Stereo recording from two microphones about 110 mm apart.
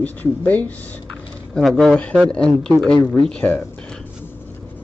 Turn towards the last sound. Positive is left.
turn(degrees=10)  # may be behind; listen again after turning